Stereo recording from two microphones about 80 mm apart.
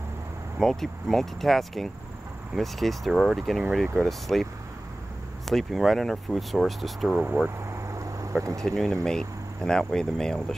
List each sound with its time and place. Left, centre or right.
0.6 s speech: centre
7.7 s a sound: right
8.5 s speech: centre